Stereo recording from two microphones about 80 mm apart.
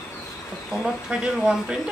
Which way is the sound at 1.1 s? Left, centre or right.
Centre.